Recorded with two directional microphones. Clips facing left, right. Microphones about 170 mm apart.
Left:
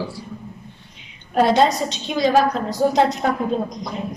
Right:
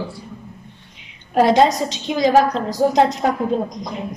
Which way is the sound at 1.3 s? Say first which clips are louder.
Right 2 dB; 20° right (ahead or behind).